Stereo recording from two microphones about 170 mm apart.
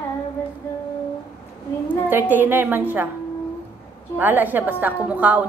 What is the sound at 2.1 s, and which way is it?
Speech, 10° right (ahead or behind).